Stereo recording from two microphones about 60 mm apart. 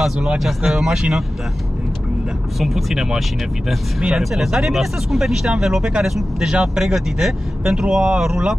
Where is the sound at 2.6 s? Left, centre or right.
Centre.